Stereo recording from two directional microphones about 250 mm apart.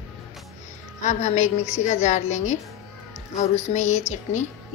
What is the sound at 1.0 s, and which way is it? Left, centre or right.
A woman's voice, left.